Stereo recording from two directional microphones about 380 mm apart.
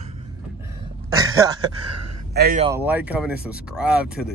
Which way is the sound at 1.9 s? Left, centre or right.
Right.